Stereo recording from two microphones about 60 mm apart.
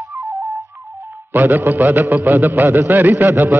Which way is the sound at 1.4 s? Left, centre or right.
Right.